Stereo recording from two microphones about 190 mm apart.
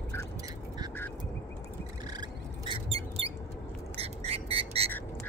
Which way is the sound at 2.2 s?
25° right (ahead or behind).